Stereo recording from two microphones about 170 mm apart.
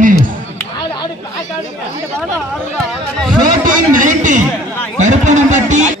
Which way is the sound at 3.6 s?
50° right (ahead or behind).